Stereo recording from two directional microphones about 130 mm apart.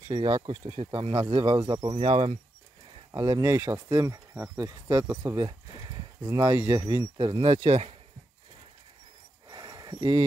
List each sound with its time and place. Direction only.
0.1 s speech: 40° right (ahead or behind)
2.0 s speech: 50° right (ahead or behind)
3.1 s speech: 30° right (ahead or behind)
5.9 s a sound: 30° right (ahead or behind)
6.7 s speech: 35° right (ahead or behind)
9.5 s a sound: 30° right (ahead or behind)